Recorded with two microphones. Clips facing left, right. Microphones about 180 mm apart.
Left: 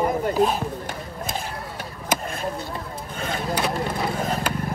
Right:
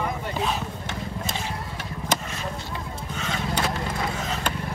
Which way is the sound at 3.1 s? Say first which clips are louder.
Left 2 dB; 50° left (ahead or behind).